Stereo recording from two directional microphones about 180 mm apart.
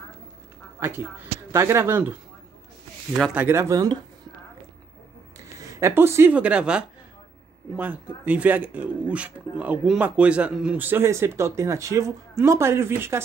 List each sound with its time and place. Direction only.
0.7 s speech: 15° right (ahead or behind)
3.3 s speech: 15° right (ahead or behind)
5.6 s speech: 15° right (ahead or behind)